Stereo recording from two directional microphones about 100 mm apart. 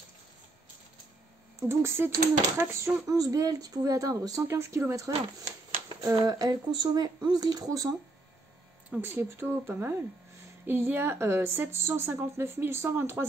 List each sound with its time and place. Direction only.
1.6 s a woman's voice: 25° right (ahead or behind)
9.0 s a woman's voice: 20° right (ahead or behind)